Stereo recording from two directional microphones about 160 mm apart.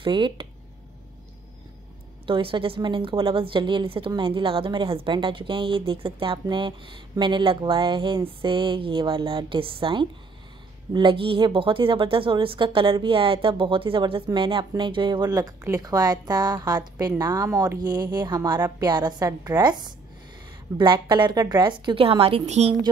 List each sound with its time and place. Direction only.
0.0 s a woman's voice: 30° right (ahead or behind)
2.2 s a woman's voice: 30° right (ahead or behind)